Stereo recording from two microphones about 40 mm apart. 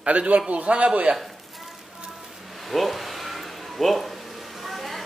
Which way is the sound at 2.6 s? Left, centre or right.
Centre.